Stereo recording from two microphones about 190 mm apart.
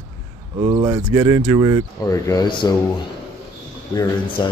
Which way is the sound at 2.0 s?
20° left (ahead or behind).